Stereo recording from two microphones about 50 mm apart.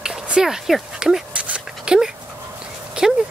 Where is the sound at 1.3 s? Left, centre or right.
Right.